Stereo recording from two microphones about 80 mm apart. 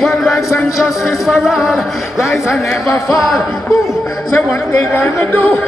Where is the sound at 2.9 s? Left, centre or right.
Left.